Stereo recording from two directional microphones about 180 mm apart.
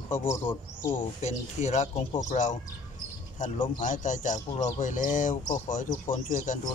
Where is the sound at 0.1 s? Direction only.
15° left (ahead or behind).